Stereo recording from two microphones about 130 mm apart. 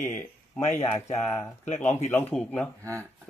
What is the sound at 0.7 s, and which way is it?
Speech, 20° left (ahead or behind).